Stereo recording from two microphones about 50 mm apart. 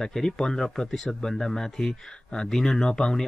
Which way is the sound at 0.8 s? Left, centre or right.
Centre.